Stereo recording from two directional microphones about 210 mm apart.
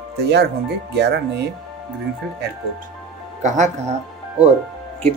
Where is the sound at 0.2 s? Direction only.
50° right (ahead or behind).